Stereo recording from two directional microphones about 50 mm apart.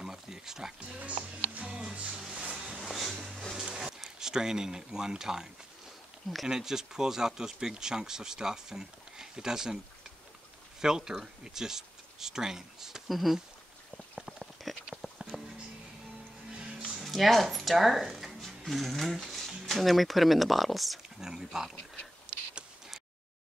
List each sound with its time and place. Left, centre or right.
0.0 s a sound: centre
1.6 s music: centre
2.8 s music: centre
3.5 s a sound: centre
6.4 s speech: centre
10.8 s speech: centre
14.1 s a sound: centre
15.3 s music: centre
17.0 s a woman's voice: centre
21.2 s speech: centre
22.3 s tick-tock: centre